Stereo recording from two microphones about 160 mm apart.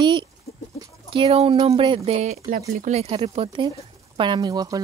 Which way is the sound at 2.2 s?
50° right (ahead or behind).